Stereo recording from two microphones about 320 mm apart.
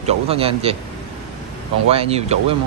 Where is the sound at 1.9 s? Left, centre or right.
Centre.